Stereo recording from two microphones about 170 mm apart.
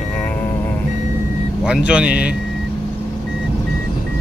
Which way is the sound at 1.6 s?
5° right (ahead or behind).